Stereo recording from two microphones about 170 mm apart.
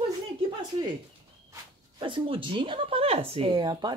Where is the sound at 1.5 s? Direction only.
30° right (ahead or behind).